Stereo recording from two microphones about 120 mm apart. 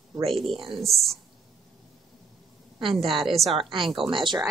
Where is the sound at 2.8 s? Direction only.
50° right (ahead or behind).